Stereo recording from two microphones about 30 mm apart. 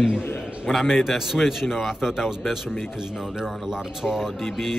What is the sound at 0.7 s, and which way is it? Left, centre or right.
Speech, centre.